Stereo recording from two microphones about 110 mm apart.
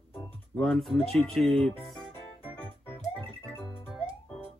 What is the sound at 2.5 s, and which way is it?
Music, 15° left (ahead or behind).